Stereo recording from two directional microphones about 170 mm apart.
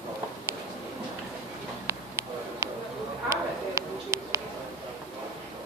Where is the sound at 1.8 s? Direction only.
15° right (ahead or behind).